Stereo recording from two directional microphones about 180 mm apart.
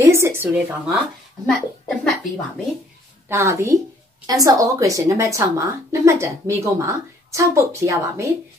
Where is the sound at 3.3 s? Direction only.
15° right (ahead or behind).